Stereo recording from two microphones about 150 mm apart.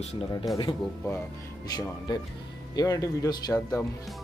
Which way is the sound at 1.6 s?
25° left (ahead or behind).